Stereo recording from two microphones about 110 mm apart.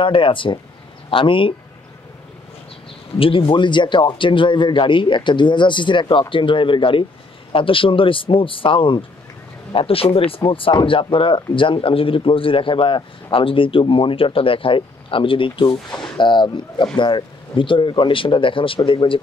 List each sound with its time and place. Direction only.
0.0 s speech: 50° left (ahead or behind)
3.2 s speech: 55° left (ahead or behind)